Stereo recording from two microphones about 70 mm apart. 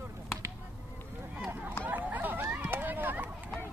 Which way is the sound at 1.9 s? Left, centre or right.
Right.